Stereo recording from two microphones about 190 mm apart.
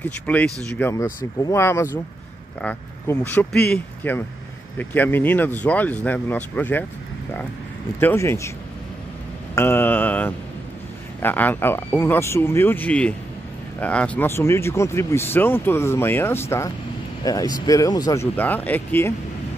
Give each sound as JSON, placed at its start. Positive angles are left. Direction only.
{"t": 0.0, "sound": "speech", "side_deg": 10}
{"t": 8.0, "sound": "speech", "side_deg": 10}
{"t": 9.6, "sound": "mantra", "side_deg": 10}
{"t": 11.1, "sound": "speech", "side_deg": 10}